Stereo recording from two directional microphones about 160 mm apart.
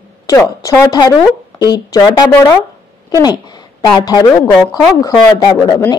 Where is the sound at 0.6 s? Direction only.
20° left (ahead or behind).